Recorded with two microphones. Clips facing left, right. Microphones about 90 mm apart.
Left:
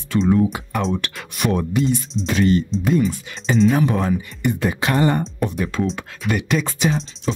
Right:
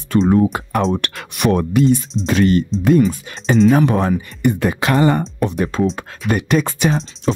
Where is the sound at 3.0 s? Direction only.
40° right (ahead or behind).